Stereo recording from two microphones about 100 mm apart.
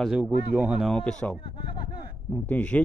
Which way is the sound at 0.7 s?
5° left (ahead or behind).